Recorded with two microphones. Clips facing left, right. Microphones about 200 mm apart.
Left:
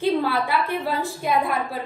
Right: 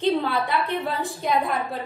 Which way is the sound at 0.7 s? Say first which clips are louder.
Left 1 dB; centre (ahead or behind).